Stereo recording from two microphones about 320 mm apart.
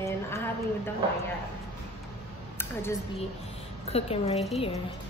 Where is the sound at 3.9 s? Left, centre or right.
Centre.